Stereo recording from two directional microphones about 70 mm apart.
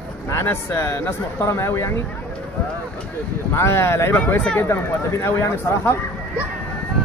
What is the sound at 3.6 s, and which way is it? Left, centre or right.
Speech, left.